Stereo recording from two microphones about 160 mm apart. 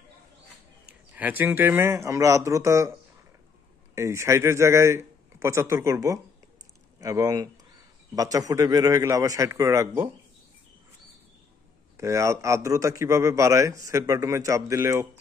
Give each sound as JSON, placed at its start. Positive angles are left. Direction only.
{"t": 1.1, "sound": "a man's voice", "side_deg": -10}
{"t": 3.9, "sound": "a man's voice", "side_deg": -15}
{"t": 12.0, "sound": "a man's voice", "side_deg": -20}